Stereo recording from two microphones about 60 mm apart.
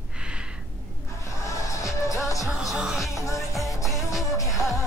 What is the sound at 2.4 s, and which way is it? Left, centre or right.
Music, centre.